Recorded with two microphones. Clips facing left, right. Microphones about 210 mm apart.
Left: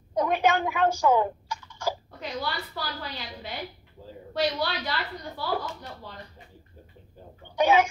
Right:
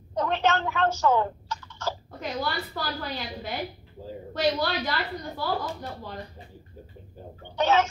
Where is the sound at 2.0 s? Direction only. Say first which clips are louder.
Right 2 dB; 45° right (ahead or behind).